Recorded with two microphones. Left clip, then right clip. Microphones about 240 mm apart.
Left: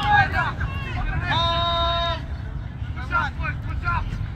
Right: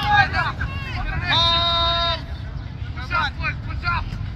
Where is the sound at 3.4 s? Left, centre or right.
Left.